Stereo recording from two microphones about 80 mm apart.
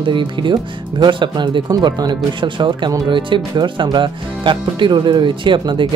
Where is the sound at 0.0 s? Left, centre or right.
Right.